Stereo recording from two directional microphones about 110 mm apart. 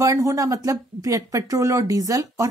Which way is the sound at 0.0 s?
30° right (ahead or behind).